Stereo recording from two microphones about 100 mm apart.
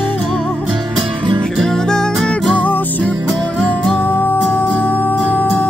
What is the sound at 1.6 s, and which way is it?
Music, 5° left (ahead or behind).